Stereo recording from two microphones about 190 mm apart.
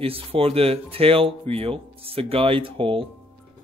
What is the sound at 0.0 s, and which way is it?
Speech, 30° right (ahead or behind).